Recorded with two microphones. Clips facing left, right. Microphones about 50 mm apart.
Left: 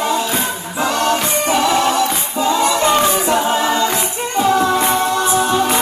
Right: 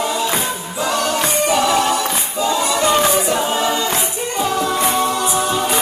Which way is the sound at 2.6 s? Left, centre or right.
Left.